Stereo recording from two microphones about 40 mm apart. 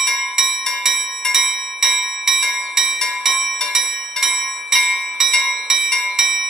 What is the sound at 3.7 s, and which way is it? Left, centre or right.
Bell, centre.